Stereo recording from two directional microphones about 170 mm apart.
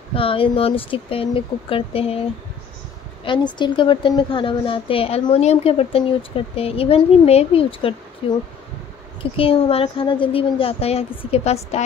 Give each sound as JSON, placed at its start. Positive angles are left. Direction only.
{"t": 0.1, "sound": "a woman's voice", "side_deg": 30}
{"t": 3.3, "sound": "a woman's voice", "side_deg": 25}